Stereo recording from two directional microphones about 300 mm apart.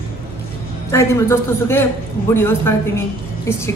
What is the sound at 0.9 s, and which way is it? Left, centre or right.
Speech, centre.